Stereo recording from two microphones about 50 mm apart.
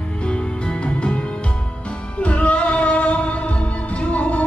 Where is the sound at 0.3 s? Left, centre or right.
Left.